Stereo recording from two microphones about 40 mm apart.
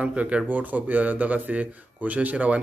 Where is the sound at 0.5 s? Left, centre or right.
Right.